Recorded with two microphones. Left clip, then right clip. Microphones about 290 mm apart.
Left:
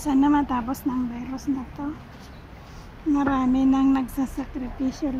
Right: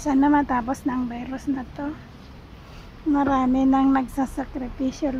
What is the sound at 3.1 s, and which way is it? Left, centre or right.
A woman's voice, right.